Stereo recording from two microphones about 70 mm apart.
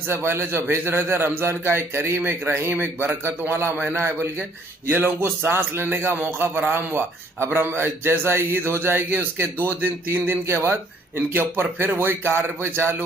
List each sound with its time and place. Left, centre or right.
0.0 s speech: right